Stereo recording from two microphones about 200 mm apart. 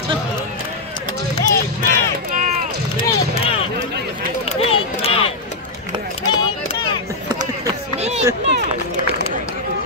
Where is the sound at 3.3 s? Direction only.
30° left (ahead or behind).